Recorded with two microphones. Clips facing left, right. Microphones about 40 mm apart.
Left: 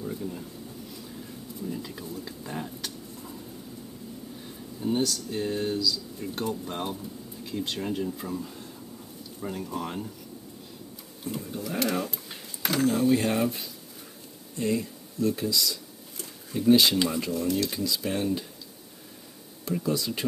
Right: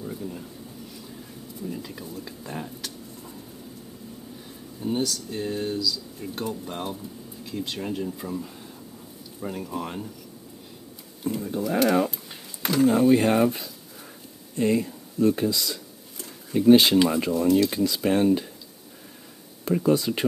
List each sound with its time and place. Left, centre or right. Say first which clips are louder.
0.0 s speech: even; centre
1.0 s a sound: even; centre
4.7 s speech: even; centre
11.3 s speech: right 6 dB; right
11.7 s cutlery: right 7 dB; right
12.1 s a sound: even; centre
12.8 s cutlery: right 5 dB; centre
14.6 s speech: right 5 dB; right
16.5 s cutlery: right 6 dB; right
16.9 s speech: right 6 dB; centre
17.6 s cutlery: right 6 dB; right
19.6 s speech: right 7 dB; right